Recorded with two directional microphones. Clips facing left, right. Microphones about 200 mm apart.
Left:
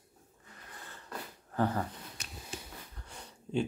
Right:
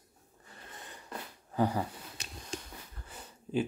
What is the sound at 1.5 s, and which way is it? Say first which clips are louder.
Speech: right 1 dB; 10° right (ahead or behind).